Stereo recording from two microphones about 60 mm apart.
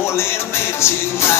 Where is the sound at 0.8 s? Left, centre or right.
Left.